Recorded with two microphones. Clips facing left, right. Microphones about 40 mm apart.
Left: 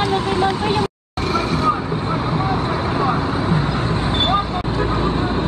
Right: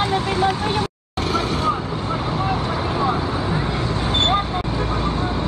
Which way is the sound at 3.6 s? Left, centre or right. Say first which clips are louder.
Left 2 dB; left.